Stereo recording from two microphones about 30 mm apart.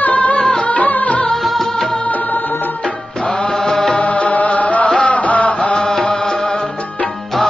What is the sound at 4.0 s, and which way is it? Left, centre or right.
Music, left.